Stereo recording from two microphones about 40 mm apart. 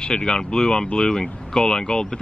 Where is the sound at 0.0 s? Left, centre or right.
Centre.